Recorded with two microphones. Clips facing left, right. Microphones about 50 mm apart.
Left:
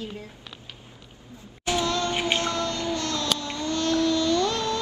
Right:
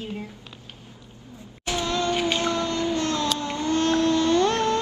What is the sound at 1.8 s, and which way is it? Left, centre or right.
Music, right.